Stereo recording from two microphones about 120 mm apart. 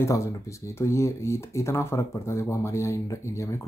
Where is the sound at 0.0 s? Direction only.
25° left (ahead or behind).